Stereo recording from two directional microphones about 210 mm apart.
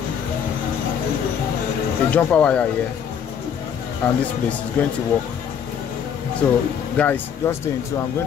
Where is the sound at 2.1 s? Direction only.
5° left (ahead or behind).